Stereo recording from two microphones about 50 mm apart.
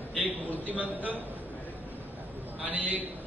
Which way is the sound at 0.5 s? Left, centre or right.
Right.